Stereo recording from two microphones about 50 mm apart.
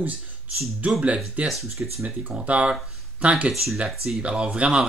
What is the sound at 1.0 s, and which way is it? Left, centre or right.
Speech, right.